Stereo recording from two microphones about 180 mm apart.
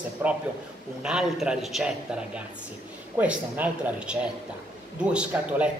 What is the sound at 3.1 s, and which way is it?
A man's voice, 10° right (ahead or behind).